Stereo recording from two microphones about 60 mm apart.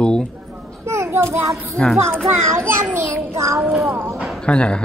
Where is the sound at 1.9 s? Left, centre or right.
Right.